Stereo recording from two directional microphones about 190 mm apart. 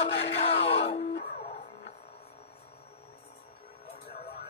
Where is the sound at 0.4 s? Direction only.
30° left (ahead or behind).